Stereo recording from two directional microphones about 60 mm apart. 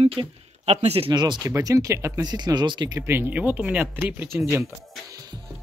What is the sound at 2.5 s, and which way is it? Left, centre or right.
Speech, right.